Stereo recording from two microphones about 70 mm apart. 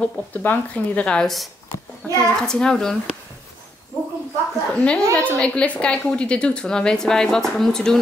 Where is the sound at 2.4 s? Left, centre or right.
Centre.